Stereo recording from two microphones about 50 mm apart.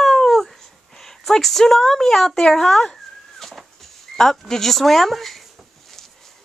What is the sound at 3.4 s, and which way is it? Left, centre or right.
Vehicle, centre.